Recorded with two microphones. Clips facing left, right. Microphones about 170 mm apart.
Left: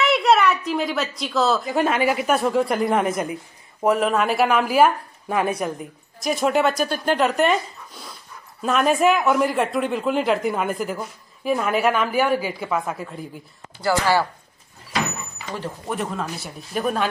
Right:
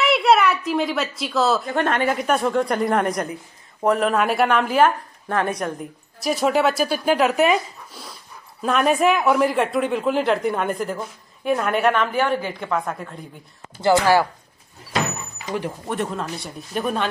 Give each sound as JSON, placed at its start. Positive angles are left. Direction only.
{"t": 0.0, "sound": "a woman's voice", "side_deg": 0}
{"t": 13.7, "sound": "speech", "side_deg": -20}
{"t": 15.9, "sound": "a woman's voice", "side_deg": 0}